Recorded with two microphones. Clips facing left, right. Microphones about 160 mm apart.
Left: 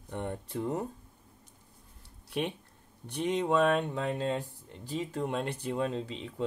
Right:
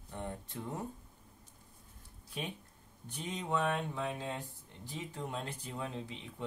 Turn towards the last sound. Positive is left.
turn(degrees=80)